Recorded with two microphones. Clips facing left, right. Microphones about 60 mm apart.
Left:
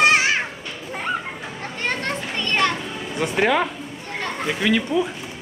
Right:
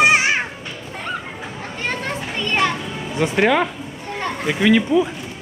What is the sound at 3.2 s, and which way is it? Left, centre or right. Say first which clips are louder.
Speech: right 3 dB; centre.